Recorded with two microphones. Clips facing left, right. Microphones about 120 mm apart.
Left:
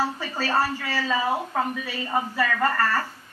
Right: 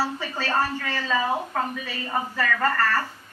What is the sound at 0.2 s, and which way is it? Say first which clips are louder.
A woman's voice: left 1 dB; 10° left (ahead or behind).